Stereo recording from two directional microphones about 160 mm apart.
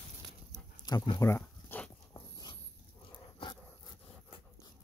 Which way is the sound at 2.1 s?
30° left (ahead or behind).